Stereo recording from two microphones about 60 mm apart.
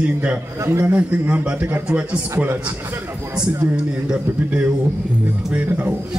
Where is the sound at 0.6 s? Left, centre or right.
Right.